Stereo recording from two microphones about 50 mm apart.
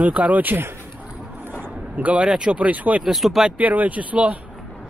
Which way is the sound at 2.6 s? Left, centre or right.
Right.